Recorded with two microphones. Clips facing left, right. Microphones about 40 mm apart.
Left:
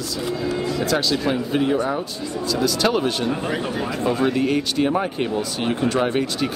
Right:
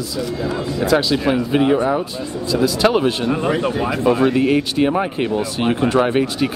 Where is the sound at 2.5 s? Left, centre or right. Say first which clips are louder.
Right 5 dB; centre.